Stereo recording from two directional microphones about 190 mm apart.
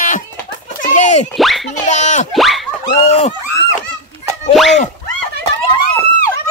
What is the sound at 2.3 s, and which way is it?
Boing, centre (ahead or behind).